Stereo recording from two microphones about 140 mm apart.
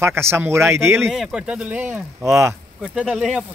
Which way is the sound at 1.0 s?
5° right (ahead or behind).